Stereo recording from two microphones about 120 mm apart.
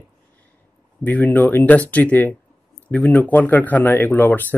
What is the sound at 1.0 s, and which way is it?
Speech, 15° left (ahead or behind).